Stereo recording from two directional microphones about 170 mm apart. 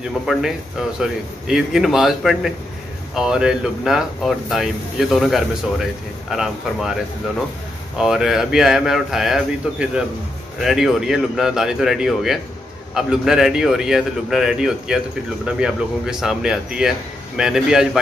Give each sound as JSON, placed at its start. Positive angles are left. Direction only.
{"t": 0.3, "sound": "a man's voice", "side_deg": -5}
{"t": 8.0, "sound": "a man's voice", "side_deg": -5}